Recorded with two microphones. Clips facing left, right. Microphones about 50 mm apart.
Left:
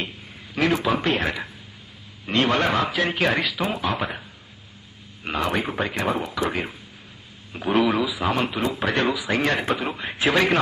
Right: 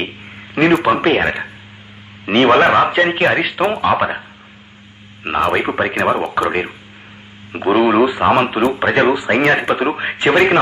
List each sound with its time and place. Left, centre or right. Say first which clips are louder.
0.6 s speech: right 9 dB; right
5.2 s speech: right 8 dB; right